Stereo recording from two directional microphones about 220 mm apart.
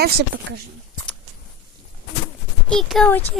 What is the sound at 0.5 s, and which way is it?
Speech, 55° right (ahead or behind).